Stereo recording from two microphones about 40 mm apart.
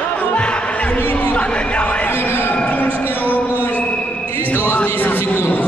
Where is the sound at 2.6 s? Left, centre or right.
Left.